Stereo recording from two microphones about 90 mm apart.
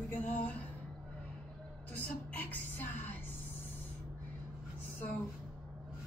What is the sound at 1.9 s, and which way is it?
Speech, 20° left (ahead or behind).